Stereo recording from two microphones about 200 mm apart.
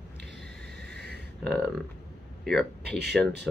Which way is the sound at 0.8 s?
55° right (ahead or behind).